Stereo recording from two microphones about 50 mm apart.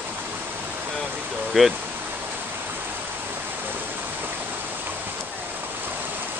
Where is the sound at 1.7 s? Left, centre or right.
Right.